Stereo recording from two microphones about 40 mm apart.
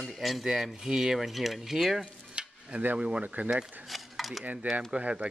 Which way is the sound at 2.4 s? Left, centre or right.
Right.